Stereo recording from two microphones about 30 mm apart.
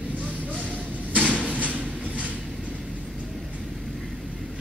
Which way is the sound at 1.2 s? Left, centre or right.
Right.